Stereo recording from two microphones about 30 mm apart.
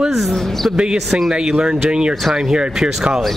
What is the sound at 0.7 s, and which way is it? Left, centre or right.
Speech, right.